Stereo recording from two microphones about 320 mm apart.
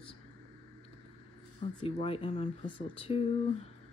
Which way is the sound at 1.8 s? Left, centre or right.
Centre.